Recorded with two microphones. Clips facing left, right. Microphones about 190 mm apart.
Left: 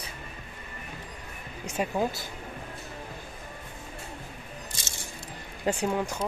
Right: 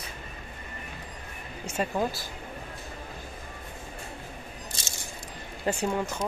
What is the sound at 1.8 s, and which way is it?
Speech, 15° left (ahead or behind).